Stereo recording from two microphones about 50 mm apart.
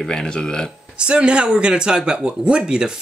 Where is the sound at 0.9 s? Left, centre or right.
Right.